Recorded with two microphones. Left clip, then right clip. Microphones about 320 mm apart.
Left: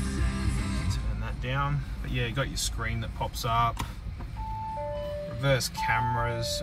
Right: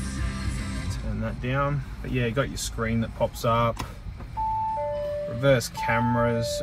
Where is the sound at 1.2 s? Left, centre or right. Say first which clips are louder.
Right 5 dB; centre.